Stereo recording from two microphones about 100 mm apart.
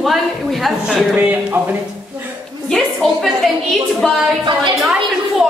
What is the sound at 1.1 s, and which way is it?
Speech, 15° right (ahead or behind).